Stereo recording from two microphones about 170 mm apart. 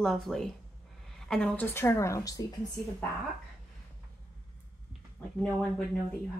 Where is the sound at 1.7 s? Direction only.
15° left (ahead or behind).